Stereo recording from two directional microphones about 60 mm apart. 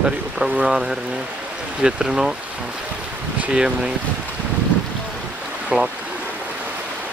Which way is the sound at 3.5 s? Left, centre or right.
Centre.